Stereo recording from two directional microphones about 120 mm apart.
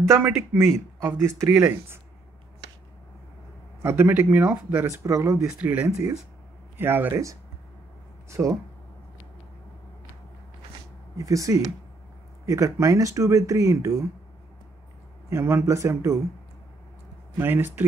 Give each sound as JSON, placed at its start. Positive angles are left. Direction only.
{"t": 0.1, "sound": "speech", "side_deg": -20}
{"t": 3.8, "sound": "speech", "side_deg": -15}
{"t": 4.8, "sound": "speech", "side_deg": -25}
{"t": 5.6, "sound": "speech", "side_deg": -15}
{"t": 11.1, "sound": "speech", "side_deg": -30}
{"t": 15.2, "sound": "speech", "side_deg": -20}
{"t": 17.4, "sound": "speech", "side_deg": -15}